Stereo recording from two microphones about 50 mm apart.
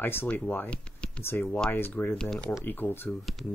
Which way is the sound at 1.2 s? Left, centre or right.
Left.